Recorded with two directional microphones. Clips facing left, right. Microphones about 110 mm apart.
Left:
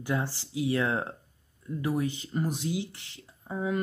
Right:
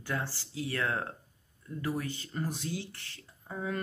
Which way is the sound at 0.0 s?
15° left (ahead or behind).